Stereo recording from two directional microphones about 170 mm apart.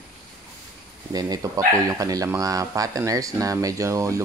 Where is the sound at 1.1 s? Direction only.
20° right (ahead or behind).